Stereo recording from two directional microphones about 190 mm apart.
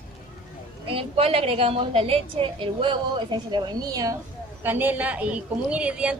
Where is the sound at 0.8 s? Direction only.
30° right (ahead or behind); by 6.2 s 5° right (ahead or behind).